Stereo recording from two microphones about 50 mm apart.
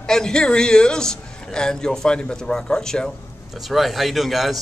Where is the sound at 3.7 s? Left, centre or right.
Centre.